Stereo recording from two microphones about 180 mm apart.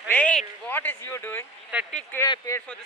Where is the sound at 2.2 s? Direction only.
15° left (ahead or behind).